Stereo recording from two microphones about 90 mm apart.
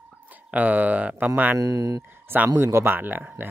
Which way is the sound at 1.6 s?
40° right (ahead or behind).